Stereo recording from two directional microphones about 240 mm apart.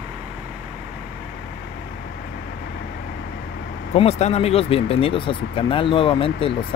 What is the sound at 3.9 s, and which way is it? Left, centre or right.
Speech, left.